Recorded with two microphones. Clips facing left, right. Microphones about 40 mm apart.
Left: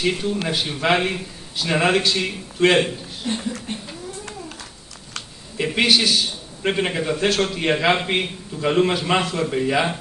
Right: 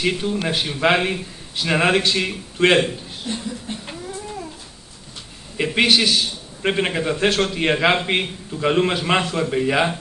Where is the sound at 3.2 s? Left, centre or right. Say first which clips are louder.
Left 3 dB; left.